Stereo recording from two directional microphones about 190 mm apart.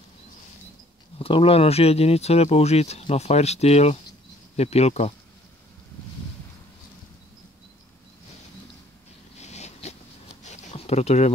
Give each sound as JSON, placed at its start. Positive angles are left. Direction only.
{"t": 1.1, "sound": "speech", "side_deg": 30}
{"t": 9.4, "sound": "zipper", "side_deg": 35}